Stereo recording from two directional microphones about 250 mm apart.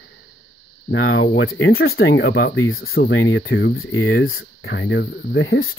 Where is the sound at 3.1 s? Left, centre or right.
Left.